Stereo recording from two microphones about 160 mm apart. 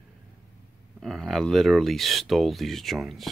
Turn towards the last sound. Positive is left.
turn(degrees=0)  # may be behind; listen again after turning